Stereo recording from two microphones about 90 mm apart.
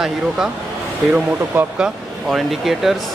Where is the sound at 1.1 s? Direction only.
20° right (ahead or behind).